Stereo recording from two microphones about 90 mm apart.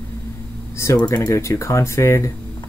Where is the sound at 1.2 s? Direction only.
35° left (ahead or behind).